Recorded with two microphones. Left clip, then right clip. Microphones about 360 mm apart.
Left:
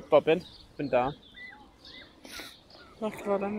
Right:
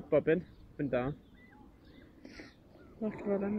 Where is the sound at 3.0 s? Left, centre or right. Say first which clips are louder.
Left 5 dB; left.